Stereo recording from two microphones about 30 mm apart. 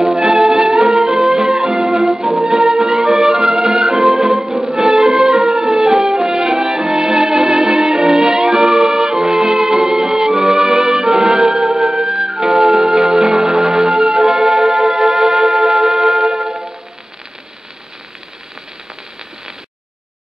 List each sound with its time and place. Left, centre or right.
0.2 s music: right
0.9 s music: centre
2.0 s music: centre
2.4 s music: centre
4.1 s music: centre
4.8 s music: right
6.5 s music: centre
11.6 s music: centre
12.5 s music: right
15.5 s music: centre